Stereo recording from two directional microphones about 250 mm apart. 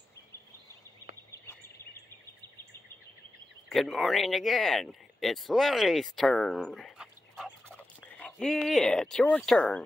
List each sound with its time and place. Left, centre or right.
3.6 s speech: centre